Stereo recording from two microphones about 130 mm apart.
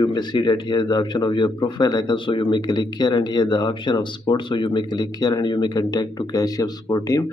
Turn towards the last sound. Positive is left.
turn(degrees=25)  # may be behind; listen again after turning